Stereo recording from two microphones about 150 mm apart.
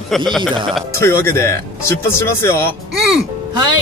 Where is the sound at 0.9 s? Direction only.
15° left (ahead or behind).